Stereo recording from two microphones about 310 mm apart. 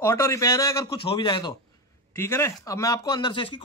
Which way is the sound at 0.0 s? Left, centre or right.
Centre.